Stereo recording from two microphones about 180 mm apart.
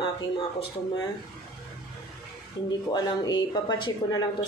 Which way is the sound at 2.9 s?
25° left (ahead or behind).